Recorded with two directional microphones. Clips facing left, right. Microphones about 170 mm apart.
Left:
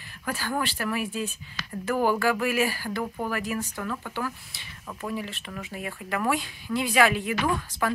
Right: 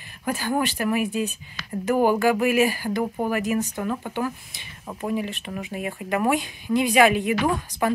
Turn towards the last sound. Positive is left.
turn(degrees=-20)  # may be behind; listen again after turning